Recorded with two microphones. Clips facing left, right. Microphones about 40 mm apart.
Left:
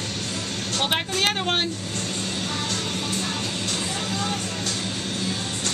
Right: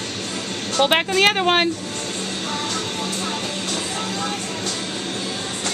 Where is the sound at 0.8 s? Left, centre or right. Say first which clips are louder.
Right 8 dB; right.